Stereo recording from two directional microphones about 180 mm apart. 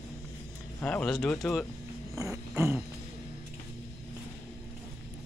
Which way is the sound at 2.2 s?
15° right (ahead or behind).